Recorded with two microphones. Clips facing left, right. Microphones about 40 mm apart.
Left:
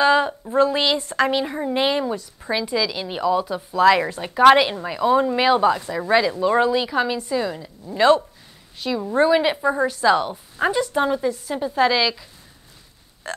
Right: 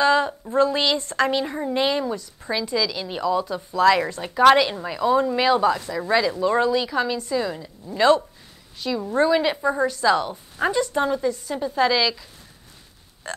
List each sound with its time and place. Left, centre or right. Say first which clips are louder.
0.0 s a woman's voice: left 2 dB; centre